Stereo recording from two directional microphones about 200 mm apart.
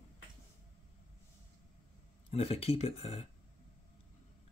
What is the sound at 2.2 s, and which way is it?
Speech, 30° left (ahead or behind).